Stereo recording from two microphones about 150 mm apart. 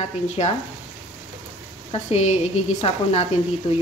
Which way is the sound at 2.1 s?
50° left (ahead or behind).